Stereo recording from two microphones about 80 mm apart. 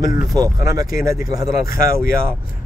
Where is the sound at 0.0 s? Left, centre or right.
Right.